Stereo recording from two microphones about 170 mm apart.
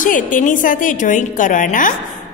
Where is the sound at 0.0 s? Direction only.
50° left (ahead or behind).